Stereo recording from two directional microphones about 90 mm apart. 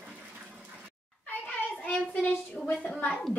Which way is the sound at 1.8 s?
10° left (ahead or behind).